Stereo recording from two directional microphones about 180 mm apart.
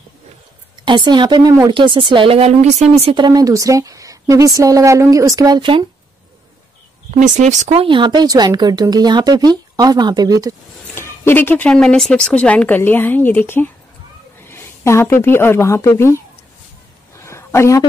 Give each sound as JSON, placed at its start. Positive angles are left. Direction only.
{"t": 0.8, "sound": "speech", "side_deg": -25}
{"t": 7.1, "sound": "speech", "side_deg": -40}
{"t": 11.0, "sound": "a woman's voice", "side_deg": 15}
{"t": 17.2, "sound": "a sound", "side_deg": 15}